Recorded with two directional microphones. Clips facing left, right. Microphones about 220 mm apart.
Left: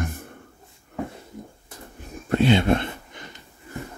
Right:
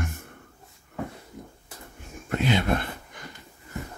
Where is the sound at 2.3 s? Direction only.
30° left (ahead or behind).